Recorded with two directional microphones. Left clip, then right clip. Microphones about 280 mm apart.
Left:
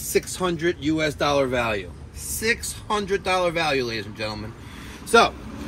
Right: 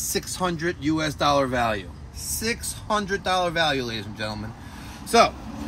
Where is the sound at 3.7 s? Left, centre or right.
Right.